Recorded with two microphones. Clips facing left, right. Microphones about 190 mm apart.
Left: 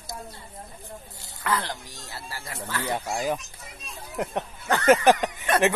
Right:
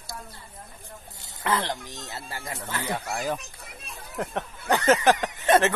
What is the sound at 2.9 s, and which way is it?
Speech, 15° left (ahead or behind).